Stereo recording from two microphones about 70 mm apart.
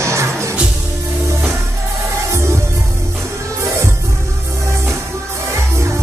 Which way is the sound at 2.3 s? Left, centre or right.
Right.